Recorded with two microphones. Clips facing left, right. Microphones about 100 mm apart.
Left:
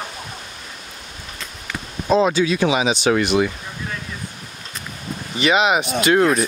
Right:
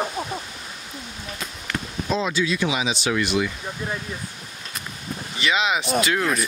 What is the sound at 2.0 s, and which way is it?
Speech, 50° left (ahead or behind).